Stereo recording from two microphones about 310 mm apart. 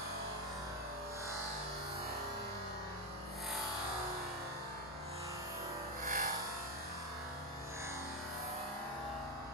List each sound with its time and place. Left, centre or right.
6.0 s music: right